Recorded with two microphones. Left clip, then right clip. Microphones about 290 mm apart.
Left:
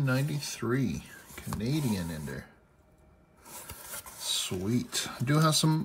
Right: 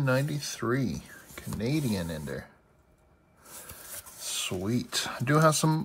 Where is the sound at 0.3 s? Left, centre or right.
Centre.